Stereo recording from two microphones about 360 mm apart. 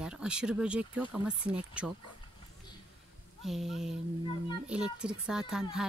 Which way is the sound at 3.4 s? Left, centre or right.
Centre.